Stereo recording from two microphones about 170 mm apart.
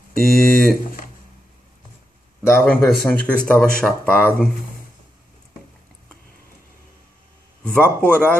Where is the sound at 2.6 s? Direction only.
10° left (ahead or behind).